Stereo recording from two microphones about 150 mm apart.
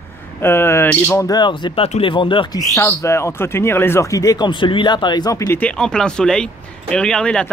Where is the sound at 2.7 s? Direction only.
20° left (ahead or behind).